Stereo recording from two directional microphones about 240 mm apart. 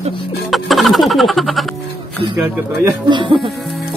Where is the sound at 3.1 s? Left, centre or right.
Centre.